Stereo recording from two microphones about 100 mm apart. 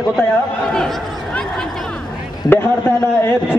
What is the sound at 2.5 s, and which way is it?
Speech, 20° left (ahead or behind).